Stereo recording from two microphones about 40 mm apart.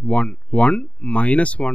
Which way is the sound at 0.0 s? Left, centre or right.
Left.